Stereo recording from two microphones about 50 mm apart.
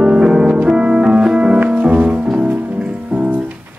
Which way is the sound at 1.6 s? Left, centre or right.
Right.